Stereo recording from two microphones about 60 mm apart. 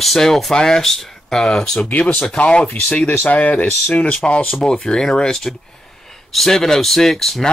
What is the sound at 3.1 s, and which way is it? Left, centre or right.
Speech, left.